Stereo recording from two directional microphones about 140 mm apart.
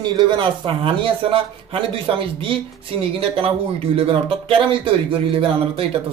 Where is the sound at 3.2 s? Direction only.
40° right (ahead or behind).